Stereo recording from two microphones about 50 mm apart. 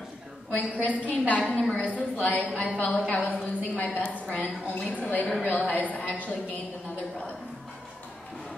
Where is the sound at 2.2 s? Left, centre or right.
Left.